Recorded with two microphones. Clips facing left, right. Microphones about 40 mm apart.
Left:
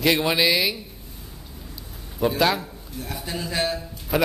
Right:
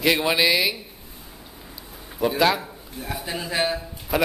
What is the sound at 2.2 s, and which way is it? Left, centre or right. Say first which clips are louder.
Speech: right 1 dB; centre.